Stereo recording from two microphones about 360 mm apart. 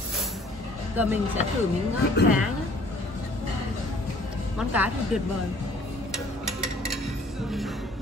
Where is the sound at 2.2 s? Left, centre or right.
Left.